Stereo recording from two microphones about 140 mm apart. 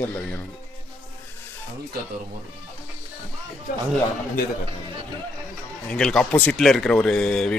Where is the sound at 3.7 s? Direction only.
90° left.